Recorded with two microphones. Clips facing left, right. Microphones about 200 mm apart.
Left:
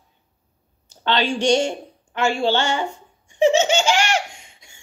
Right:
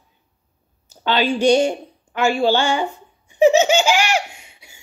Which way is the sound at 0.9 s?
10° right (ahead or behind).